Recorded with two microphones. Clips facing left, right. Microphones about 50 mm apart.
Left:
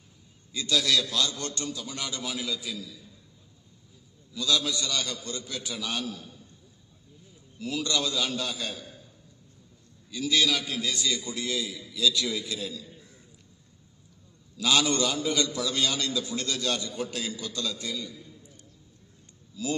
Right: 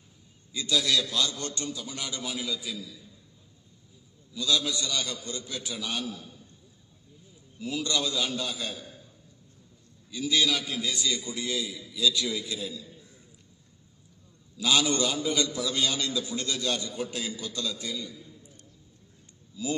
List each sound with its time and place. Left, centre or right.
0.5 s a man's voice: centre
4.3 s a man's voice: right
7.5 s a man's voice: centre
10.1 s a man's voice: right
14.6 s a man's voice: centre